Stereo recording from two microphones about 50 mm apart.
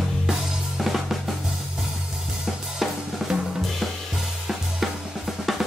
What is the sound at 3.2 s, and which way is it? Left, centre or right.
Drum, centre.